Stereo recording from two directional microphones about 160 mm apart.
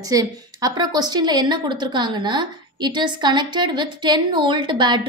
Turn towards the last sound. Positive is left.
turn(degrees=-30)  # may be behind; listen again after turning